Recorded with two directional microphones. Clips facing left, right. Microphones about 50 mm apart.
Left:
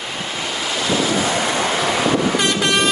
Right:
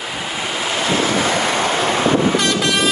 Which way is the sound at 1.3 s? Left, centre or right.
Right.